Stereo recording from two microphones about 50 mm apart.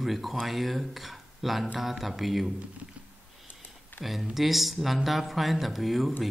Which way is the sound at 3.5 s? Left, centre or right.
Left.